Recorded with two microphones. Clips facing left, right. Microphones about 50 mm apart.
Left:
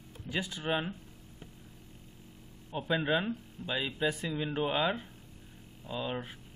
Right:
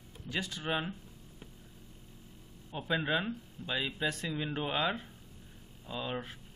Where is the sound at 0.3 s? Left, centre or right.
Centre.